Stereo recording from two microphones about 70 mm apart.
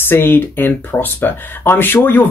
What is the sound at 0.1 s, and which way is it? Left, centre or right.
Speech, left.